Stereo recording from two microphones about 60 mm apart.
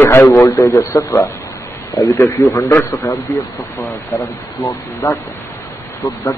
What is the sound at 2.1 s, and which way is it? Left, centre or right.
Speech, left.